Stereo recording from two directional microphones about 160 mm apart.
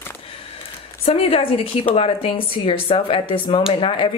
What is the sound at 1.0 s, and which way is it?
Speech, 35° left (ahead or behind).